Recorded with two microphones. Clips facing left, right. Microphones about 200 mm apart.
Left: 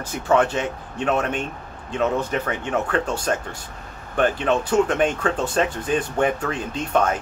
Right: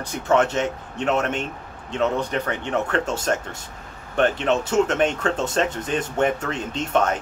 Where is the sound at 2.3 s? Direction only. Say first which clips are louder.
Left 1 dB; 10° left (ahead or behind).